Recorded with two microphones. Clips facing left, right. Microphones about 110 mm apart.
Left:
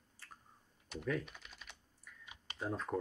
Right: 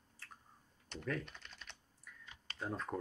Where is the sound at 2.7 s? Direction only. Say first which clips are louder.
Left 3 dB; centre (ahead or behind).